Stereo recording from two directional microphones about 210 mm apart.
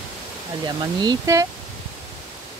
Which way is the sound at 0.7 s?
20° right (ahead or behind).